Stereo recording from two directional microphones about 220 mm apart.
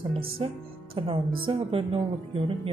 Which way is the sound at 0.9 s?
25° right (ahead or behind).